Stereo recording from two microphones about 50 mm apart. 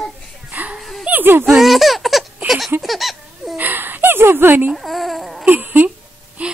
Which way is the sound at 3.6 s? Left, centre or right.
Right.